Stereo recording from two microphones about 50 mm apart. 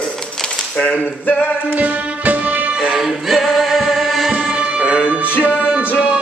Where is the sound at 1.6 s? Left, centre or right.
Right.